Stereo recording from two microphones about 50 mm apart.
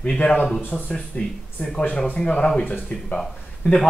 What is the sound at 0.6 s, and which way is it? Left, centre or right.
Speech, left.